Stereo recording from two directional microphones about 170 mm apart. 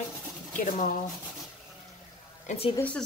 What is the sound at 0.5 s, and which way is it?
Speech, 50° left (ahead or behind).